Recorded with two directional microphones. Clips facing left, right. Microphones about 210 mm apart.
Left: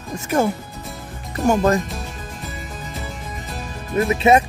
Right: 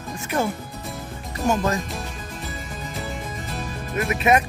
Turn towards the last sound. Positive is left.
turn(degrees=30)  # may be behind; listen again after turning